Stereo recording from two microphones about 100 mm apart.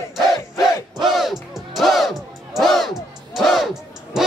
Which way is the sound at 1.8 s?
Centre (ahead or behind).